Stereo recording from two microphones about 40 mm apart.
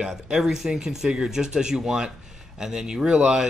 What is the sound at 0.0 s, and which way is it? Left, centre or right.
Speech, centre.